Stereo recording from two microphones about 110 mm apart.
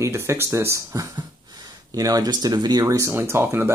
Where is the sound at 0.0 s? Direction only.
25° right (ahead or behind).